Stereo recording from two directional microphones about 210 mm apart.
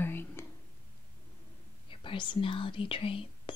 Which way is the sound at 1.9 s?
25° left (ahead or behind).